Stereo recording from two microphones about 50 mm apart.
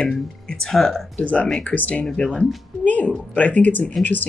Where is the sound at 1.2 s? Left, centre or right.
Left.